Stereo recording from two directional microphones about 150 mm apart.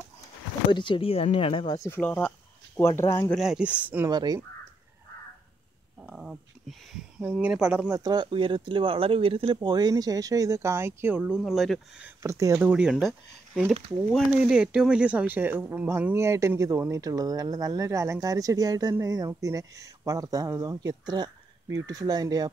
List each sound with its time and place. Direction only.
0.7 s speech: 30° left (ahead or behind)
1.8 s speech: 15° left (ahead or behind)
3.3 s speech: 5° right (ahead or behind)
4.1 s speech: 30° right (ahead or behind)
6.9 s speech: 5° right (ahead or behind)
7.9 s speech: 25° right (ahead or behind); by 12.1 s centre (ahead or behind)
12.2 s speech: 20° right (ahead or behind)
14.1 s speech: 5° right (ahead or behind); by 22.5 s 25° right (ahead or behind)